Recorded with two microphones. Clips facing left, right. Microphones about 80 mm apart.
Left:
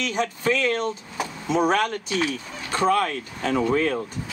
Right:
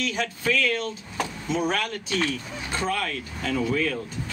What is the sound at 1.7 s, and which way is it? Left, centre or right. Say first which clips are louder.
Speech: left 5 dB; left.